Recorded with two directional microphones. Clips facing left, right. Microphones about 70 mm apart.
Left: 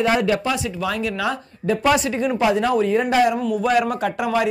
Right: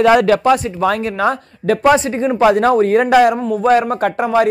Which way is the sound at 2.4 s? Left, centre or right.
Right.